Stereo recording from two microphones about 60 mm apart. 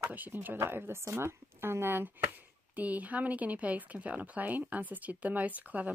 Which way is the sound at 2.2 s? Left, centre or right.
Right.